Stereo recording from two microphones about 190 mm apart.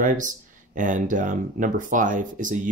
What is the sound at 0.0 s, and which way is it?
Speech, 45° right (ahead or behind).